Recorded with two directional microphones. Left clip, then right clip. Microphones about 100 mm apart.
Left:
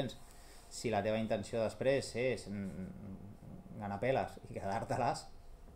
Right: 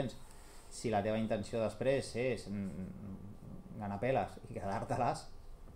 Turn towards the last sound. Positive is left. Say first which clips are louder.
# even
turn(degrees=30)  # may be behind; listen again after turning